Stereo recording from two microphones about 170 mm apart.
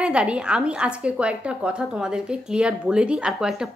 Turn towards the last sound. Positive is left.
turn(degrees=-5)  # may be behind; listen again after turning